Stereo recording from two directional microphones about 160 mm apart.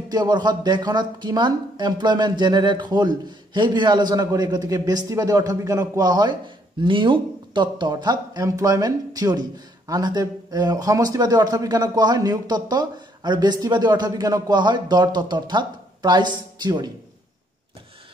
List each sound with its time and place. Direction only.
0.1 s speech: 25° right (ahead or behind)